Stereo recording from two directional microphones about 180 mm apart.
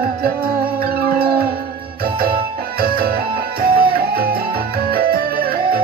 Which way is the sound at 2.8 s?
55° right (ahead or behind).